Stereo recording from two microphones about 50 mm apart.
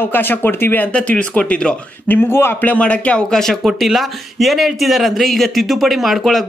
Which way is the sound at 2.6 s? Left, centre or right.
Left.